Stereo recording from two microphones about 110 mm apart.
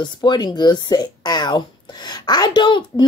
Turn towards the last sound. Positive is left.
turn(degrees=45)  # may be behind; listen again after turning